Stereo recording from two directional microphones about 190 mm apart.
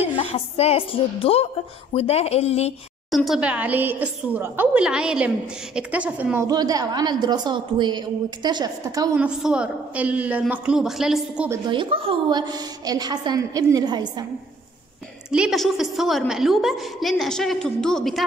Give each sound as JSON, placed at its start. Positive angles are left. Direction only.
{"t": 0.1, "sound": "a woman's voice", "side_deg": 30}
{"t": 3.1, "sound": "a woman's voice", "side_deg": 0}
{"t": 9.1, "sound": "a woman's voice", "side_deg": -5}
{"t": 11.6, "sound": "a woman's voice", "side_deg": -25}
{"t": 15.3, "sound": "a woman's voice", "side_deg": 0}